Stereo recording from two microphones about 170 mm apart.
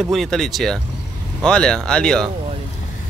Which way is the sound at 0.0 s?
Centre (ahead or behind).